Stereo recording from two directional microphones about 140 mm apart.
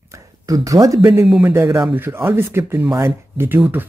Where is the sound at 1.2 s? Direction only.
10° right (ahead or behind).